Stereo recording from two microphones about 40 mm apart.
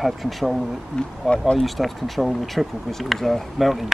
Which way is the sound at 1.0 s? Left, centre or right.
Centre.